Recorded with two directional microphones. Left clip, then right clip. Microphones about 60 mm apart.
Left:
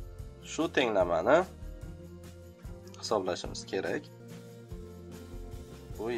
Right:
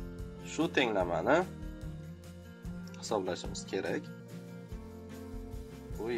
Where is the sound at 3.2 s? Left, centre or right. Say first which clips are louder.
Left 2 dB; centre.